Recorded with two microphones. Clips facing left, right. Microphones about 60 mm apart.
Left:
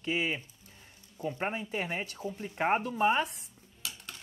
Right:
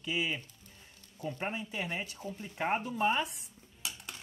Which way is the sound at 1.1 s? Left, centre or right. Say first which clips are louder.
Left 3 dB; left.